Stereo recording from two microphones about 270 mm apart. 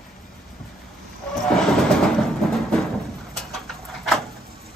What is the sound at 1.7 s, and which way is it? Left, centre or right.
Music, centre.